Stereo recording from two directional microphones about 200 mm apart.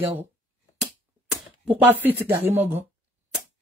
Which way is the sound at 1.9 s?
10° right (ahead or behind).